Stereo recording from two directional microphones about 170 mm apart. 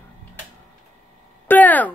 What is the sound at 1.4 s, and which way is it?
Speech, 10° left (ahead or behind).